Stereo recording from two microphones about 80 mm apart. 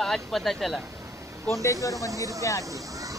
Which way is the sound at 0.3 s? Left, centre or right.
Centre.